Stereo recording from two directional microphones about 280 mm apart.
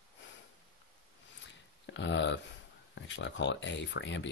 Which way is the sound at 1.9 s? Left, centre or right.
Left.